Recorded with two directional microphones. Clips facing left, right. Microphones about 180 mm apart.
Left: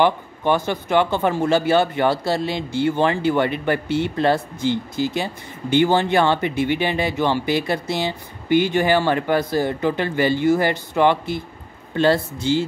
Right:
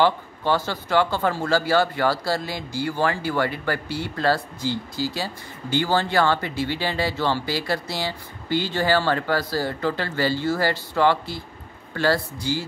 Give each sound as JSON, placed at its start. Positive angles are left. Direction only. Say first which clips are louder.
{"t": 0.0, "sound": "speech", "louder": "left 2 dB", "side_deg": 20}